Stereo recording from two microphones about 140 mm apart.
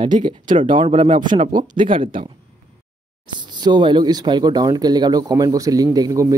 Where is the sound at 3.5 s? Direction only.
30° right (ahead or behind).